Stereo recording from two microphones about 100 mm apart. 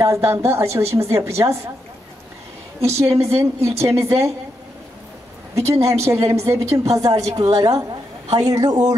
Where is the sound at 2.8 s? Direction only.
90° right.